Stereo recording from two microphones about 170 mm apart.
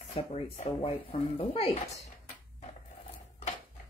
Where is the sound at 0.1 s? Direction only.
40° left (ahead or behind).